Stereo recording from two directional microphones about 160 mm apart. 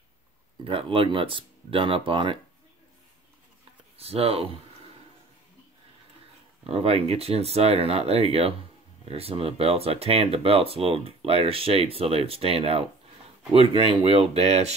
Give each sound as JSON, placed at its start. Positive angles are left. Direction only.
{"t": 0.7, "sound": "speech", "side_deg": -35}
{"t": 4.0, "sound": "speech", "side_deg": -40}
{"t": 6.6, "sound": "speech", "side_deg": -40}